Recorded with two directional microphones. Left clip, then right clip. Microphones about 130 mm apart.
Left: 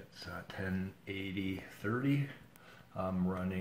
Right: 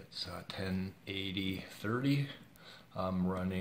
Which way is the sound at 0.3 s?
30° right (ahead or behind).